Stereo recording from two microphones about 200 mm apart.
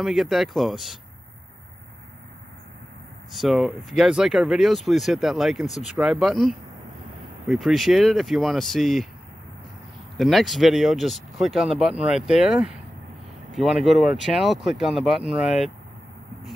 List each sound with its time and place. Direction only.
0.0 s speech: centre (ahead or behind)
3.3 s speech: centre (ahead or behind)
10.1 s speech: centre (ahead or behind)